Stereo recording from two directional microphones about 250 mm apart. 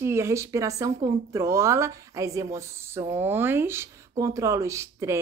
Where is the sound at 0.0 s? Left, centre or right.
Centre.